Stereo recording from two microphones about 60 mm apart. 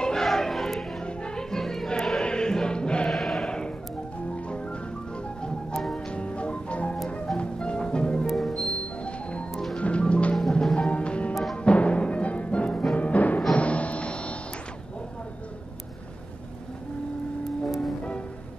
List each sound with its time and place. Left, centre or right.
0.0 s music: centre
3.1 s music: centre
3.4 s music: centre
5.7 s music: centre
5.9 s music: centre
8.3 s music: centre
10.3 s music: centre
11.5 s timpani: centre
12.9 s music: left